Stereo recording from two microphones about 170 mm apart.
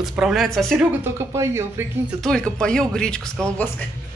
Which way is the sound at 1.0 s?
15° right (ahead or behind).